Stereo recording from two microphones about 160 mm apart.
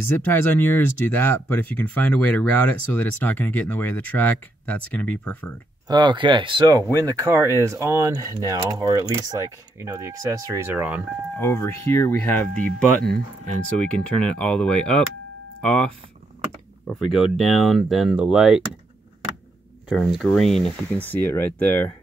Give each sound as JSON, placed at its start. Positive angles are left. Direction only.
{"t": 0.2, "sound": "speech", "side_deg": 10}
{"t": 5.9, "sound": "speech", "side_deg": -25}
{"t": 11.3, "sound": "speech", "side_deg": 15}
{"t": 13.7, "sound": "speech", "side_deg": 5}
{"t": 19.9, "sound": "speech", "side_deg": 0}
{"t": 21.0, "sound": "speech", "side_deg": 10}